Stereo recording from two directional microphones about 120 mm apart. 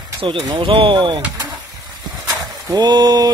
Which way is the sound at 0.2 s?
45° right (ahead or behind).